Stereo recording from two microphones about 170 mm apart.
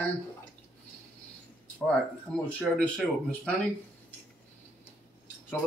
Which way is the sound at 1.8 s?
5° left (ahead or behind).